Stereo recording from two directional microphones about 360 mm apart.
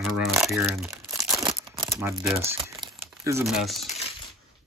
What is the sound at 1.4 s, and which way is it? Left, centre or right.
Crumpling, centre.